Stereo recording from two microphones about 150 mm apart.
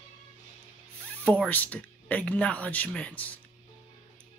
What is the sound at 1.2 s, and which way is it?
Speech, 10° left (ahead or behind).